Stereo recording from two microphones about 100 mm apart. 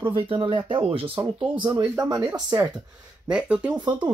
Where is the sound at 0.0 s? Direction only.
60° right (ahead or behind).